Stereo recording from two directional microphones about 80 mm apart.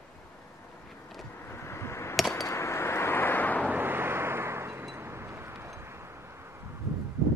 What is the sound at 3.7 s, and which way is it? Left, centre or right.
Vehicle, right.